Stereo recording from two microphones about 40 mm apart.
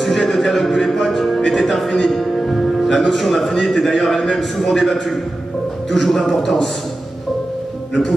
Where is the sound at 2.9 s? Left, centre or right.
Centre.